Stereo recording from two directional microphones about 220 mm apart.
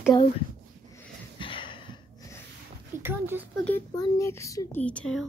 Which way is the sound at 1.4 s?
20° left (ahead or behind).